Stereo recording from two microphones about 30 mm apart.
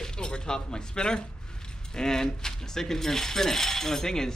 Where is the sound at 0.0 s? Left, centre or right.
Left.